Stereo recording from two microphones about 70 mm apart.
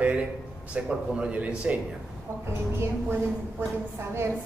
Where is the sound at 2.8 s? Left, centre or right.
Right.